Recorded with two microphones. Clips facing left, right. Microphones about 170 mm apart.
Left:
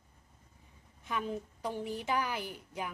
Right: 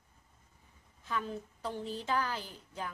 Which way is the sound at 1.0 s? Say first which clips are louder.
Left 1 dB; 15° left (ahead or behind).